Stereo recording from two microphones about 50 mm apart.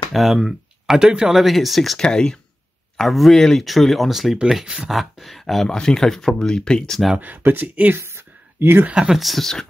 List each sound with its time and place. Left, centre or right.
0.1 s speech: centre
0.9 s speech: centre
1.3 s speech: centre
2.0 s speech: centre
3.0 s speech: centre
7.2 s speech: right
7.9 s a sound: right
8.9 s speech: centre
9.2 s speech: centre